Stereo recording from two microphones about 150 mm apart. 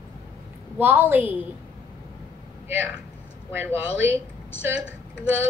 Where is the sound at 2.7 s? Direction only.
10° right (ahead or behind).